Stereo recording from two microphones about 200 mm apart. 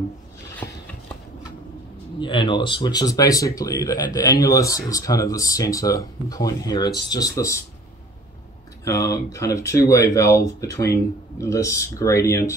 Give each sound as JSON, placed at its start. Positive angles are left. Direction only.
{"t": 0.6, "sound": "a sound", "side_deg": 10}
{"t": 2.1, "sound": "speech", "side_deg": 25}
{"t": 8.8, "sound": "speech", "side_deg": 15}